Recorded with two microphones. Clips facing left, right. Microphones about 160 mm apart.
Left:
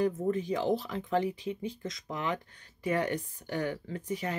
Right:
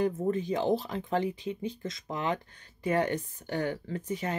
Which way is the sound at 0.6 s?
25° right (ahead or behind).